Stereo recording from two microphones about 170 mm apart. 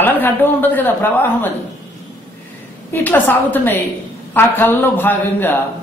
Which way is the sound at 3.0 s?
10° left (ahead or behind).